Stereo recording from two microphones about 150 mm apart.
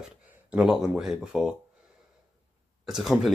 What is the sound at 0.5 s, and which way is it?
Speech, 5° right (ahead or behind).